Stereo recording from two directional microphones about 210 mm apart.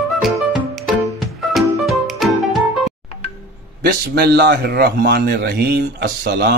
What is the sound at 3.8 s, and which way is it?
A man's voice, 50° right (ahead or behind).